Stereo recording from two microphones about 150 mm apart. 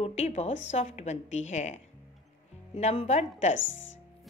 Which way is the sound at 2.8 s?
50° left (ahead or behind).